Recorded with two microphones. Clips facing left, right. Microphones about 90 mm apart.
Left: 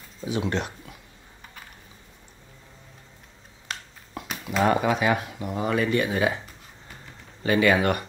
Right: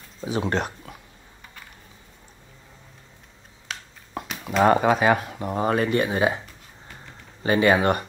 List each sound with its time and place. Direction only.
0.2 s speech: 40° right (ahead or behind)
3.7 s a sound: centre (ahead or behind)
4.6 s speech: 40° right (ahead or behind)
5.9 s speech: 30° right (ahead or behind)
7.4 s speech: 30° right (ahead or behind)